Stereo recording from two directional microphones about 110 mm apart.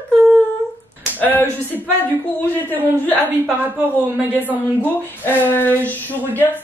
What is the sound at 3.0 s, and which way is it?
Speech, 15° left (ahead or behind).